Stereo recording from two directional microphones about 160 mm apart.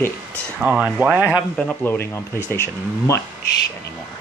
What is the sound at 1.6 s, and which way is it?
Speech, 10° left (ahead or behind).